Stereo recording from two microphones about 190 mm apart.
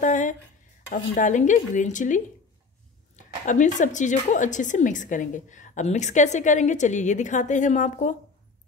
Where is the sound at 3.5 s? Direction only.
40° left (ahead or behind).